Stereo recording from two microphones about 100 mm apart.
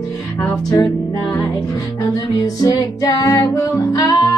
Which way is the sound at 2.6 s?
40° left (ahead or behind).